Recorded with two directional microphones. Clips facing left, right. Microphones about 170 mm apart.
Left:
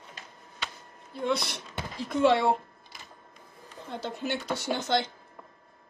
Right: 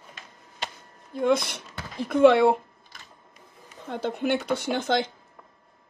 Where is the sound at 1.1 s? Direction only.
50° right (ahead or behind).